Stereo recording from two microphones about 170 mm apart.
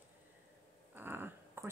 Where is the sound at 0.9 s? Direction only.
10° right (ahead or behind).